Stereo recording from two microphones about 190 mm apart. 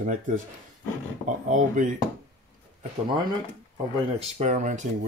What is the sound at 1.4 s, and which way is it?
Speech, 40° right (ahead or behind).